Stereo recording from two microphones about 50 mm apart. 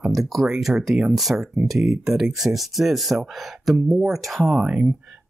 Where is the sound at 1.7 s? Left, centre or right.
Centre.